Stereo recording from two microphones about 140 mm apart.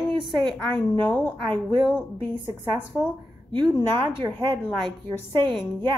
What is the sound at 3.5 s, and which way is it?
A woman's voice, 30° right (ahead or behind).